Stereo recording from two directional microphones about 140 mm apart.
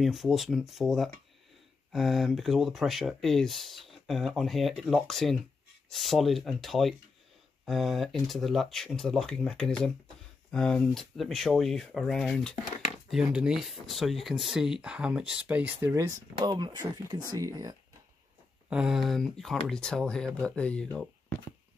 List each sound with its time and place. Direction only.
0.0 s speech: centre (ahead or behind); by 16.1 s 15° right (ahead or behind)
16.4 s speech: 30° right (ahead or behind)
18.7 s speech: 5° right (ahead or behind)